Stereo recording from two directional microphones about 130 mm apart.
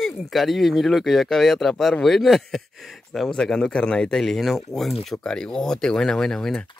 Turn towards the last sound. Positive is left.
turn(degrees=5)  # may be behind; listen again after turning